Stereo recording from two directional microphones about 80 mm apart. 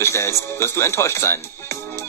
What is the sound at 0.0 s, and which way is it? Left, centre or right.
Speech, left.